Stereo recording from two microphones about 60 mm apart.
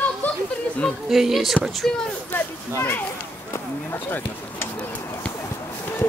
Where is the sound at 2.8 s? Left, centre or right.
Left.